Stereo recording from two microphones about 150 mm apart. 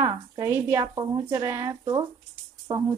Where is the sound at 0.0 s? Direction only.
20° right (ahead or behind).